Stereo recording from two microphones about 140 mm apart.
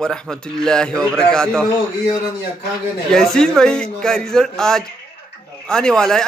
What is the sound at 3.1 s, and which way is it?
Speech, 5° left (ahead or behind).